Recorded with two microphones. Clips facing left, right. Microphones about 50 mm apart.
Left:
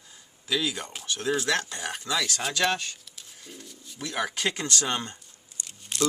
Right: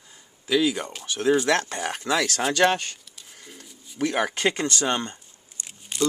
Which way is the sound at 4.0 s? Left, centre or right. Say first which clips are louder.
Right 6 dB; right.